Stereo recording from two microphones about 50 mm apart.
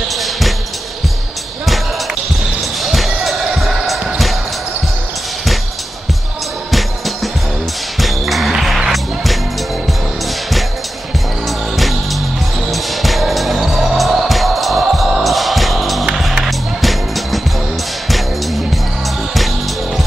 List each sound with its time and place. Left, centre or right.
0.1 s basketball bounce: centre
2.8 s basketball bounce: centre
6.7 s music: centre
11.4 s music: centre